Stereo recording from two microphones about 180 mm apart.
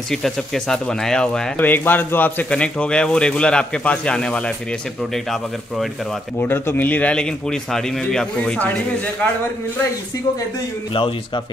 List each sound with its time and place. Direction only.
0.1 s speech: centre (ahead or behind)
6.4 s speech: 10° left (ahead or behind)
10.9 s a man's voice: 30° left (ahead or behind)